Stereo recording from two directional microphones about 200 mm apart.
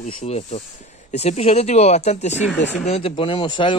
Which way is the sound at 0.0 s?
35° left (ahead or behind).